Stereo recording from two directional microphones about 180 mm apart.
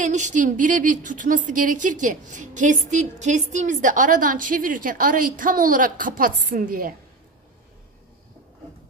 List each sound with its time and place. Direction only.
0.0 s a woman's voice: 45° right (ahead or behind)